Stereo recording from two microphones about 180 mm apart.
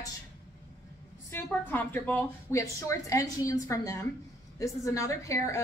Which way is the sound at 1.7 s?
10° left (ahead or behind).